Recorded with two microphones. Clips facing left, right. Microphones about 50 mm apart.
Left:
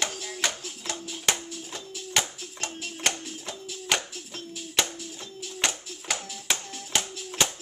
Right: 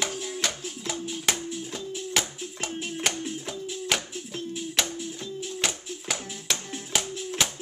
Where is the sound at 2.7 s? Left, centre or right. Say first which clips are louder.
Right 5 dB; right.